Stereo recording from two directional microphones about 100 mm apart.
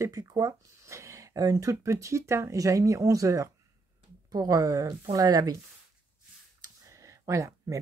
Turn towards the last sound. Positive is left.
turn(degrees=-35)  # may be behind; listen again after turning